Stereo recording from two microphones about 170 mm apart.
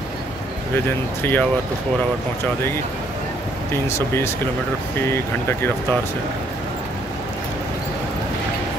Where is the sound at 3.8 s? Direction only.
15° left (ahead or behind).